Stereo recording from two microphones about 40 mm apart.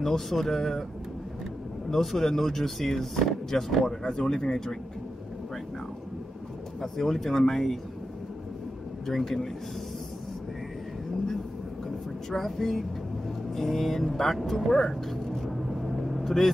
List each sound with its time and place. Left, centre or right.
0.0 s speech: centre
1.9 s speech: centre
6.8 s speech: centre
9.0 s speech: centre
12.4 s speech: centre